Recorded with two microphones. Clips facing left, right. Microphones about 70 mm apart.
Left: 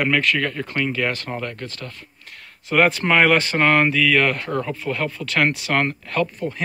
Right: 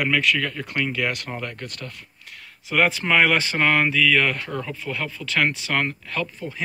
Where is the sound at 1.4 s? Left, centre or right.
Centre.